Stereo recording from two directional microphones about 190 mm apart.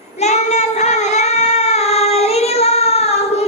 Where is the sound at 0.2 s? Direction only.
35° left (ahead or behind).